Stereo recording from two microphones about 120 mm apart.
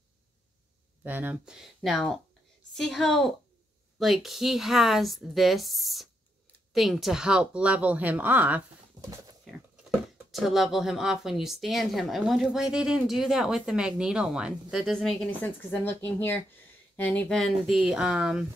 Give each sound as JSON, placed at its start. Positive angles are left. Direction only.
{"t": 1.0, "sound": "speech", "side_deg": -15}
{"t": 9.4, "sound": "speech", "side_deg": 0}
{"t": 15.7, "sound": "speech", "side_deg": 20}
{"t": 17.7, "sound": "speech", "side_deg": -10}